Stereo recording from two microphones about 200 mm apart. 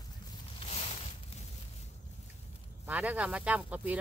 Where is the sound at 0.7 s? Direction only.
30° left (ahead or behind).